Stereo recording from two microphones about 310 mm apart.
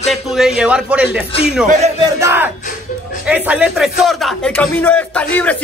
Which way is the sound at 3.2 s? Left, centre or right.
Centre.